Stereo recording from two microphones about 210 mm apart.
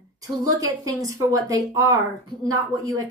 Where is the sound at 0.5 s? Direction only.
15° right (ahead or behind).